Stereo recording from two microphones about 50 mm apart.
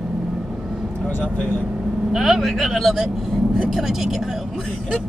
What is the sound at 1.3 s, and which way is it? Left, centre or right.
Speech, left.